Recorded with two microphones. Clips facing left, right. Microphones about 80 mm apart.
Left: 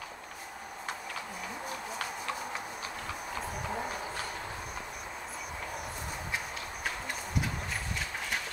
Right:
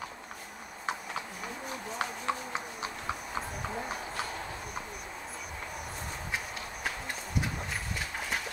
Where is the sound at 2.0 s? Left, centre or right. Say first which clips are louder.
Right 6 dB; right.